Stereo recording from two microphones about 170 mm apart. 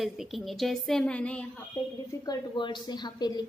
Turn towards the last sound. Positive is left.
turn(degrees=25)  # may be behind; listen again after turning